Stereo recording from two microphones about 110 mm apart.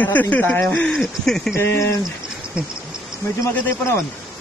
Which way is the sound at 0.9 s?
Centre (ahead or behind).